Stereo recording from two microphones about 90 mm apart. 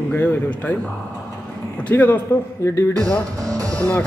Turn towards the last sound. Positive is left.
turn(degrees=15)  # may be behind; listen again after turning